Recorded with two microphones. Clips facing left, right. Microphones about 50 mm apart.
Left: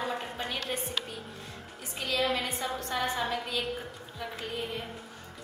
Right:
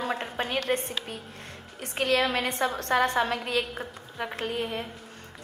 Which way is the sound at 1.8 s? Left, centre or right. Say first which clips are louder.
Right 6 dB; right.